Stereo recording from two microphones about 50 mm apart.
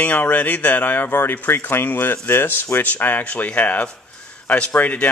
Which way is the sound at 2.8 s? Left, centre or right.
Left.